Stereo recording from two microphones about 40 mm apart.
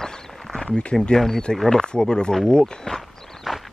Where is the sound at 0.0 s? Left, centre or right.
Centre.